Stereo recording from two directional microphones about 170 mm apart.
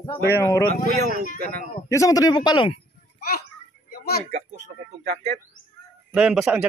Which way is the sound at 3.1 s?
60° left (ahead or behind).